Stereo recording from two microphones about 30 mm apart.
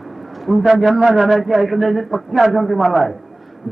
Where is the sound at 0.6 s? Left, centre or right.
Centre.